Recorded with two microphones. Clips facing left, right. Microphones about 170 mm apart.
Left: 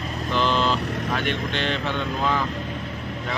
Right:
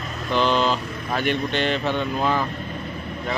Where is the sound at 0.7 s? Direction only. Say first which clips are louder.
Left 4 dB; 75° left (ahead or behind).